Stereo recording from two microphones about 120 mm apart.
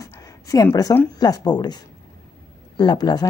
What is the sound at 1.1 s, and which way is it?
Speech, 35° left (ahead or behind).